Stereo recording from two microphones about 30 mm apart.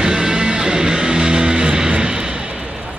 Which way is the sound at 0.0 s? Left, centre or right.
Right.